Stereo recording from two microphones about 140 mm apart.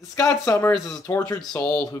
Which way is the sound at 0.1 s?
20° left (ahead or behind).